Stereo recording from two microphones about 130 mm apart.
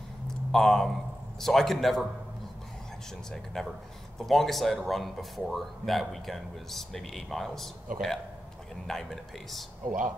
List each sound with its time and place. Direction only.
0.5 s speech: centre (ahead or behind)
3.6 s speech: 5° left (ahead or behind)
8.8 s speech: centre (ahead or behind)
9.8 s speech: 90° right